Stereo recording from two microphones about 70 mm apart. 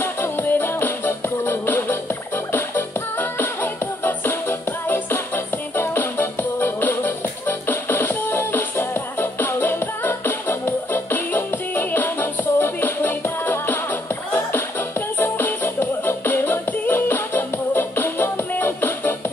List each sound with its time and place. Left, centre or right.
0.0 s music: left